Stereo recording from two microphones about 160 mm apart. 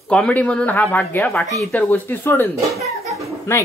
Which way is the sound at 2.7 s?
20° right (ahead or behind).